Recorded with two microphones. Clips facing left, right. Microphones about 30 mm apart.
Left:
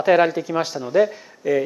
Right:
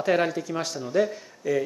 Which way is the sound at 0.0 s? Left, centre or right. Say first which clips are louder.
Left 7 dB; centre.